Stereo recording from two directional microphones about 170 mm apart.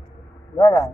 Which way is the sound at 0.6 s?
20° left (ahead or behind).